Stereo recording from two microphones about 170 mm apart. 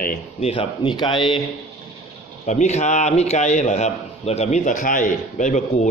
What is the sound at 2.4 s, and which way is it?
A man's voice, 45° left (ahead or behind).